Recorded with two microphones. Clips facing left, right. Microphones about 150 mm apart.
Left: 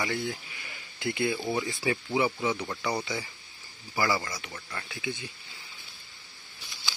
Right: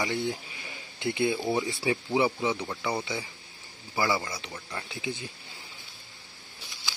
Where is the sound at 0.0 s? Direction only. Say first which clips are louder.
Right 2 dB; 20° right (ahead or behind).